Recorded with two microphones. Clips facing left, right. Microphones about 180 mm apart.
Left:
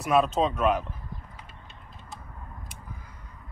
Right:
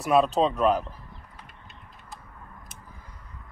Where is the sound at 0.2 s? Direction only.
30° right (ahead or behind).